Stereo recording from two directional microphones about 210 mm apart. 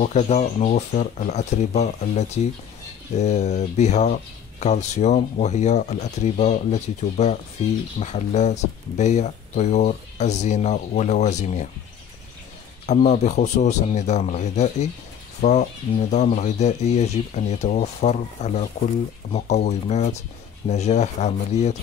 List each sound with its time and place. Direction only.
0.0 s speech: 35° left (ahead or behind)
12.8 s speech: 35° left (ahead or behind)